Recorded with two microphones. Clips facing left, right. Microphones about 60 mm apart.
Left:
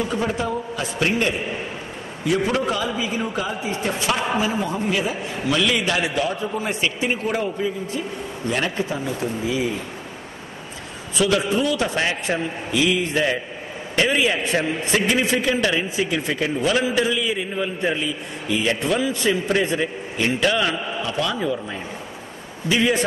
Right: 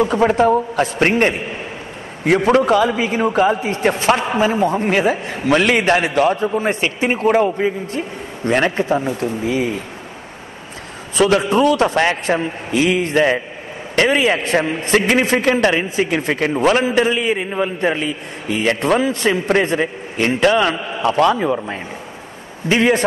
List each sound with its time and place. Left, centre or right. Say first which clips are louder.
0.0 s a man's voice: right 9 dB; right
11.1 s a man's voice: right 6 dB; right